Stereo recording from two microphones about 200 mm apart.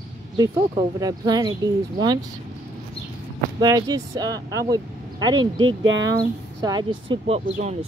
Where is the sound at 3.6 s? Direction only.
20° right (ahead or behind).